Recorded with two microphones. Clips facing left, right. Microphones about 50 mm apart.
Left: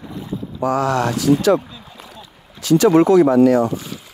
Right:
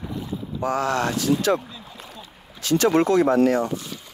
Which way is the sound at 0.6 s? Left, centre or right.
Left.